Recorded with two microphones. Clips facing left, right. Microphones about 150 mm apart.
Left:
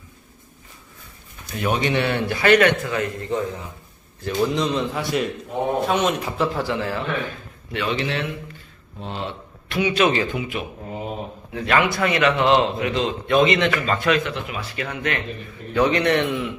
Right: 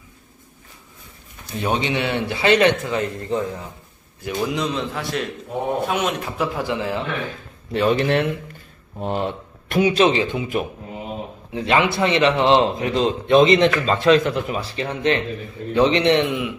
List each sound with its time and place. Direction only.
1.5 s speech: 25° right (ahead or behind)
4.2 s a man's voice: 10° right (ahead or behind)
6.6 s a man's voice: 15° right (ahead or behind)
7.7 s speech: 40° right (ahead or behind)
10.0 s speech: 25° right (ahead or behind)
11.5 s speech: 25° right (ahead or behind)
14.2 s speech: 40° right (ahead or behind); by 16.4 s 20° right (ahead or behind)